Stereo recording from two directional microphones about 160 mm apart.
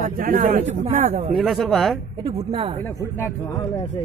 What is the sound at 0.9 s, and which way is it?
Speech, 45° right (ahead or behind).